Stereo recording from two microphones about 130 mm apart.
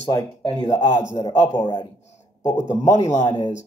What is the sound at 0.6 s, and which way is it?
Speech, 30° left (ahead or behind).